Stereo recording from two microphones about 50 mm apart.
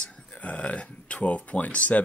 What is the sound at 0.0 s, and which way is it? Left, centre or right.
Speech, left.